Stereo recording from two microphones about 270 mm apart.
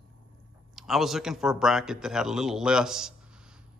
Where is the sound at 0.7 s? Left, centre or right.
Centre.